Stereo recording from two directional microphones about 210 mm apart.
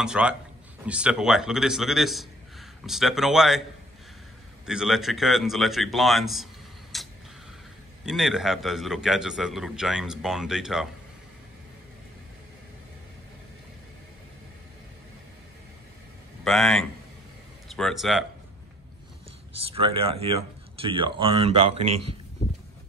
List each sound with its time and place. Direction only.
0.0 s a man's voice: 5° right (ahead or behind)
4.6 s a man's voice: centre (ahead or behind)
16.4 s a man's voice: centre (ahead or behind)
19.7 s speech: 25° right (ahead or behind)